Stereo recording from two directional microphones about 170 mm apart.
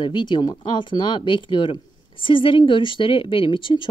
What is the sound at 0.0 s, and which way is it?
A woman's voice, 25° left (ahead or behind).